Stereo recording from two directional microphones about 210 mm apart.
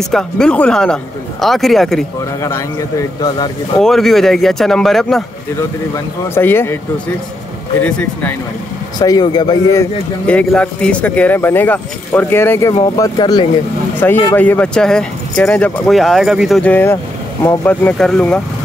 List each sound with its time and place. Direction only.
0.1 s speech: 5° left (ahead or behind)
3.8 s speech: centre (ahead or behind)
6.2 s speech: 10° left (ahead or behind)
7.8 s speech: 10° left (ahead or behind)
8.9 s speech: 20° left (ahead or behind)
13.9 s speech: 10° left (ahead or behind)